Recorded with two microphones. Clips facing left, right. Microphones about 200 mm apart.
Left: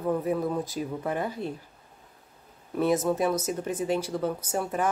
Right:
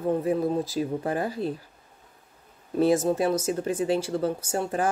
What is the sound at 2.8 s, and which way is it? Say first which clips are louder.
Speech: right 3 dB; 30° right (ahead or behind).